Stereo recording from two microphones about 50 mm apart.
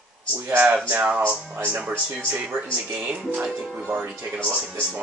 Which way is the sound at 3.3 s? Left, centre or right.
Centre.